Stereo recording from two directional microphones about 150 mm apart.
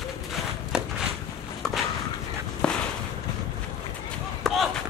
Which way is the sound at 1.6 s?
5° left (ahead or behind).